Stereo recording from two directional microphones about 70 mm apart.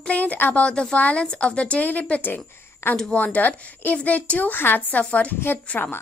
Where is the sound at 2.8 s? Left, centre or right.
Left.